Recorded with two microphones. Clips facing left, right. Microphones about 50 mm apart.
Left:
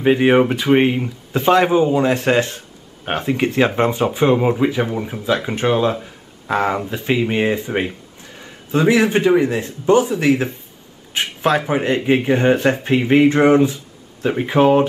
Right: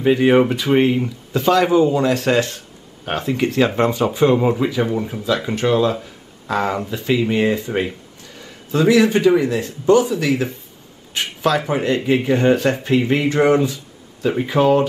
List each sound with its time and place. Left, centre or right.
0.0 s speech: left